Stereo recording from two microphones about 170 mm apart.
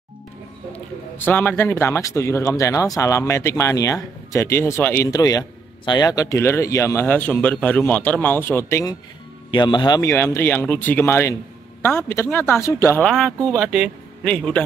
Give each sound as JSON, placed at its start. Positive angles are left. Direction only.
{"t": 0.7, "sound": "a man's voice", "side_deg": 10}
{"t": 9.5, "sound": "a man's voice", "side_deg": 25}
{"t": 13.7, "sound": "speech", "side_deg": 5}